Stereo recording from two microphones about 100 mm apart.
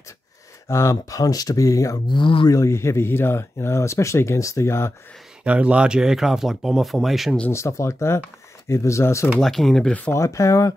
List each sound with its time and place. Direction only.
0.7 s speech: 30° left (ahead or behind)
2.0 s speech: 55° left (ahead or behind)
2.5 s speech: 30° left (ahead or behind)
5.4 s speech: 10° right (ahead or behind)
7.5 s speech: 30° left (ahead or behind)
9.4 s speech: 5° left (ahead or behind)
10.1 s speech: 30° left (ahead or behind)